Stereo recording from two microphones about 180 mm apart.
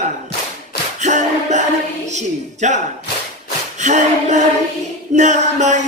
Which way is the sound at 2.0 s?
40° right (ahead or behind).